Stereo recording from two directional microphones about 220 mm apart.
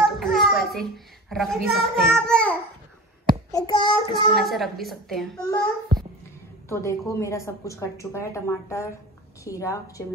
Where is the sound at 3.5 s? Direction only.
20° left (ahead or behind).